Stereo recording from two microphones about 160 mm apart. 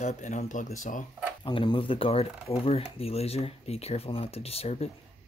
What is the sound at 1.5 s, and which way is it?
Speech, 30° left (ahead or behind).